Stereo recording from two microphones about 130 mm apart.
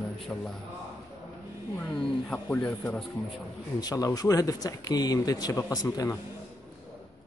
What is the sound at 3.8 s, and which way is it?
Speech, 30° left (ahead or behind).